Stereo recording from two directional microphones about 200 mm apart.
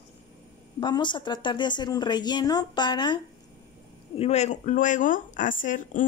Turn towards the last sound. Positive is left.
turn(degrees=40)  # may be behind; listen again after turning